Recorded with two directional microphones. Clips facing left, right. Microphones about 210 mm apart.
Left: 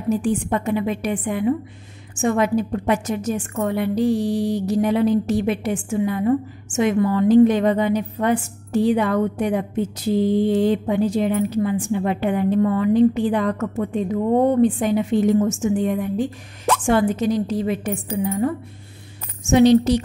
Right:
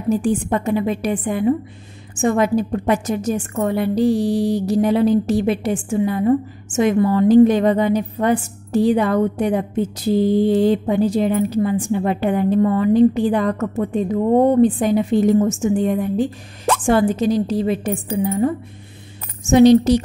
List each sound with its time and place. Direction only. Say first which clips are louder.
0.1 s a woman's voice: right 2 dB; 35° right (ahead or behind)
19.5 s a woman's voice: right 3 dB; 40° right (ahead or behind)